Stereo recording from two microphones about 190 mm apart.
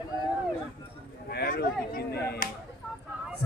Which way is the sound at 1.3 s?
55° left (ahead or behind).